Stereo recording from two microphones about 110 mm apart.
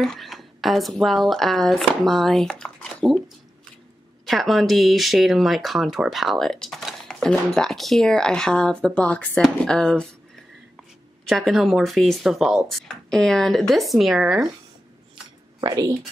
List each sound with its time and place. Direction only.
0.0 s speech: centre (ahead or behind)
4.3 s speech: centre (ahead or behind)
11.2 s speech: centre (ahead or behind)
15.6 s speech: 35° right (ahead or behind)